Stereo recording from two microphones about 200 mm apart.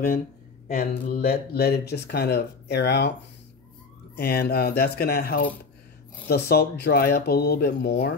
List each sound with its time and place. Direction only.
0.7 s speech: 50° left (ahead or behind)
4.2 s speech: 50° left (ahead or behind)